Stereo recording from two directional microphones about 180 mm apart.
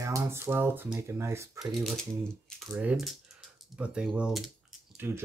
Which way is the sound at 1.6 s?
Centre (ahead or behind).